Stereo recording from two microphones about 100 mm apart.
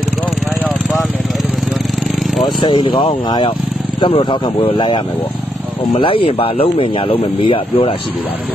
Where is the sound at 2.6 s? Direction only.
50° left (ahead or behind).